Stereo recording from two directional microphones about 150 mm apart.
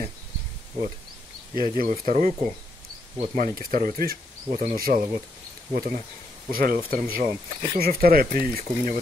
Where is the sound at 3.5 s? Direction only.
70° right (ahead or behind).